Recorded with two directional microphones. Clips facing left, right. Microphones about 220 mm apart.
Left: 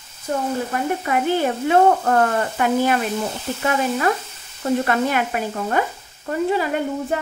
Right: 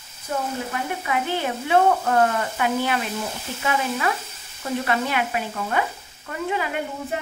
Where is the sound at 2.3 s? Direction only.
45° left (ahead or behind).